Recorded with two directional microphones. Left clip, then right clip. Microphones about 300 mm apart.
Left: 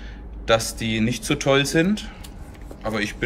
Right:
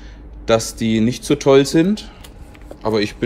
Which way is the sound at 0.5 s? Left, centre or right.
Centre.